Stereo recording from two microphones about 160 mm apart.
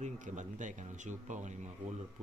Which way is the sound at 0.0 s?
50° right (ahead or behind).